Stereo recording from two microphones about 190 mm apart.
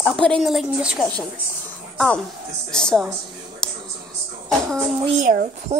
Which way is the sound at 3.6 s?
5° left (ahead or behind).